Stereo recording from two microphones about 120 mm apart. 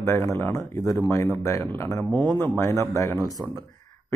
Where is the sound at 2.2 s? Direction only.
35° right (ahead or behind).